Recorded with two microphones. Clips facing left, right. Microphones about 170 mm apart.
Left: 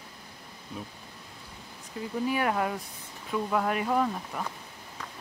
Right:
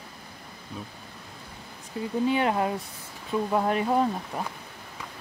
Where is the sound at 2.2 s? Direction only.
25° right (ahead or behind).